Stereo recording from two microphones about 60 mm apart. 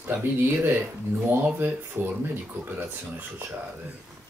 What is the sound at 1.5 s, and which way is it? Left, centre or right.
Speech, right.